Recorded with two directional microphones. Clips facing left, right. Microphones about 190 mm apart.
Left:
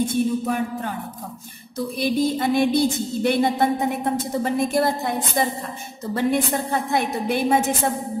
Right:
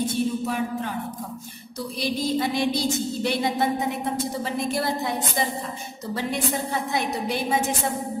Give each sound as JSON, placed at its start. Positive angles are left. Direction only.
{"t": 0.0, "sound": "music", "side_deg": 50}
{"t": 2.0, "sound": "music", "side_deg": 55}